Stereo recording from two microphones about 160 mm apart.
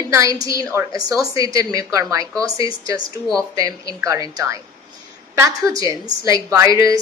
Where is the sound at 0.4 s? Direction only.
20° right (ahead or behind).